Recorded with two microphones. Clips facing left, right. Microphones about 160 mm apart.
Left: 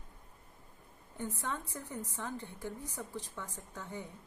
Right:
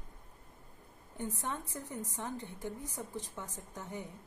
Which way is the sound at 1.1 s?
15° right (ahead or behind).